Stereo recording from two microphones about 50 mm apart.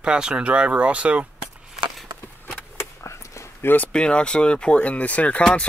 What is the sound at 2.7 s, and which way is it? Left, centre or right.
Vehicle, left.